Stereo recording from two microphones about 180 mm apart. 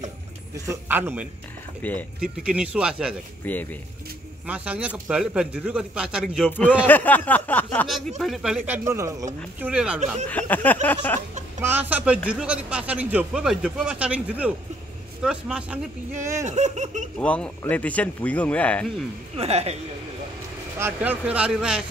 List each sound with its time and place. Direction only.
0.7 s speech: 10° right (ahead or behind)
1.8 s a man's voice: 10° left (ahead or behind)
2.4 s speech: 5° right (ahead or behind)
3.4 s a man's voice: 10° left (ahead or behind)
4.5 s speech: 5° right (ahead or behind)
6.8 s a man's voice: 10° left (ahead or behind)
8.2 s speech: centre (ahead or behind); by 9.7 s 15° right (ahead or behind)
9.7 s speech: 5° right (ahead or behind)
10.3 s a man's voice: 10° left (ahead or behind)
11.6 s speech: 10° right (ahead or behind)
16.4 s laughter: 40° right (ahead or behind)
17.2 s a man's voice: 10° left (ahead or behind)
19.3 s laughter: 35° right (ahead or behind)
20.8 s speech: 10° right (ahead or behind)